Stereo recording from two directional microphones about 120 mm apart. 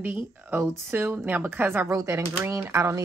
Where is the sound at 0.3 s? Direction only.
15° right (ahead or behind).